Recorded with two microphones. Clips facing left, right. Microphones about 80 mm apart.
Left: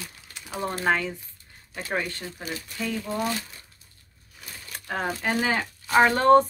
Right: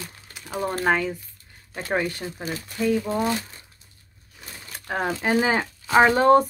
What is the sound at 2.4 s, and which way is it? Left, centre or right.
Speech, right.